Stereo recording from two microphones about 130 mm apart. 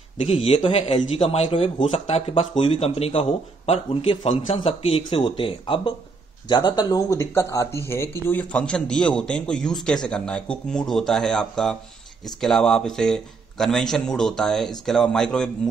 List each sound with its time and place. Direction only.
0.2 s a man's voice: 45° left (ahead or behind)
6.5 s a man's voice: 30° left (ahead or behind); by 15.7 s 5° left (ahead or behind)